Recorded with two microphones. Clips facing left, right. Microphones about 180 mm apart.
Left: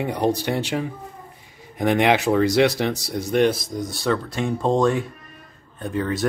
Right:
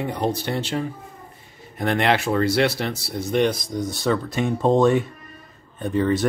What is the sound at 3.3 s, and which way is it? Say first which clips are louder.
A man's voice: left 2 dB; 5° left (ahead or behind).